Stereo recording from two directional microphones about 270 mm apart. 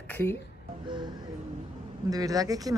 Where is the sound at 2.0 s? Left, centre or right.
Centre.